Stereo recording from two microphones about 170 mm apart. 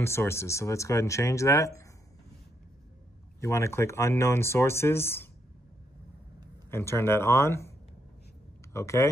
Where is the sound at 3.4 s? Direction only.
15° left (ahead or behind).